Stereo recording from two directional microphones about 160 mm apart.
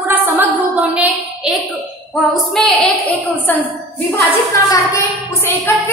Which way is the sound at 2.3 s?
Centre (ahead or behind).